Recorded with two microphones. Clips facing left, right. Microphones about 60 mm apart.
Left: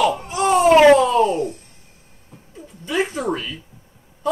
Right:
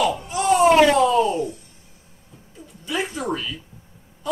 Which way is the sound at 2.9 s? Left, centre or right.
Left.